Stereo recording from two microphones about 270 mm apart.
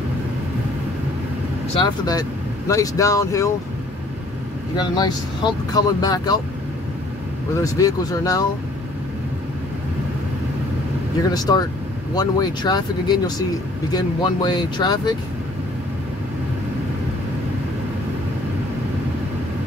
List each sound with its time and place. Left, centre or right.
1.8 s speech: centre
4.7 s speech: centre
7.6 s speech: centre
11.3 s speech: centre